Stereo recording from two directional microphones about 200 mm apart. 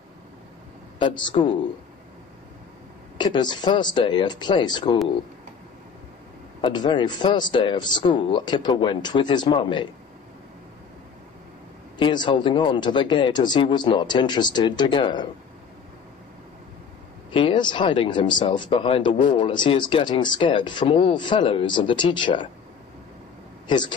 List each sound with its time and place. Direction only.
0.9 s speech: 25° left (ahead or behind)
3.2 s speech: 20° left (ahead or behind)
6.6 s speech: 20° left (ahead or behind)
12.0 s speech: 25° left (ahead or behind)
17.3 s speech: 25° left (ahead or behind)